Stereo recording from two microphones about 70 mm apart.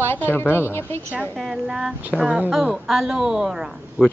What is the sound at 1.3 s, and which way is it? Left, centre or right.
A woman's voice, centre.